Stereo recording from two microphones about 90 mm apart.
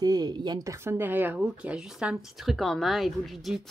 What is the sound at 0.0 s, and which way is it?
Speech, 50° right (ahead or behind).